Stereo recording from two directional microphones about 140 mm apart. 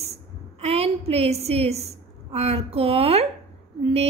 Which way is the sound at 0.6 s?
45° right (ahead or behind).